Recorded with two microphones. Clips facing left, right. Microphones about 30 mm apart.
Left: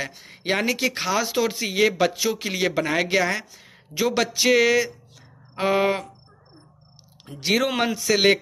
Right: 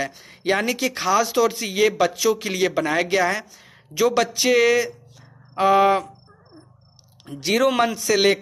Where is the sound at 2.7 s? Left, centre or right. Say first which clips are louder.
Right 1 dB; centre.